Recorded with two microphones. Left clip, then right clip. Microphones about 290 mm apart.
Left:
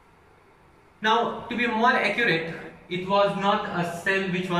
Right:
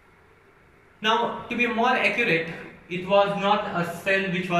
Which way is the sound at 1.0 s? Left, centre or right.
Centre.